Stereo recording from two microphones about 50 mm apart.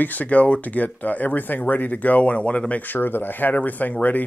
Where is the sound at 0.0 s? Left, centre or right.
Left.